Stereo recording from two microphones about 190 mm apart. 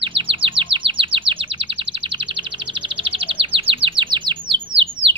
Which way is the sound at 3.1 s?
30° right (ahead or behind).